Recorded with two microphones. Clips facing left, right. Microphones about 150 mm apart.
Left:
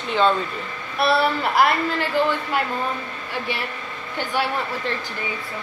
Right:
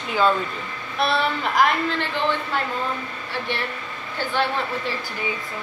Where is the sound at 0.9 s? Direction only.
5° left (ahead or behind).